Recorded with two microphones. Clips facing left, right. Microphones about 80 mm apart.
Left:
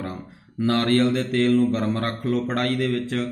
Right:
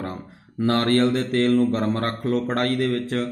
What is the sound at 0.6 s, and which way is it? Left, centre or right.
Speech, right.